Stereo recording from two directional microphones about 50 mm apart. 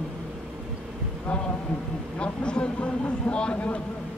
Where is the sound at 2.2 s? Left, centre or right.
Left.